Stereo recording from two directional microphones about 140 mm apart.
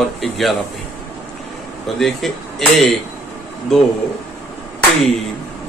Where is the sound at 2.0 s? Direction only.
Centre (ahead or behind).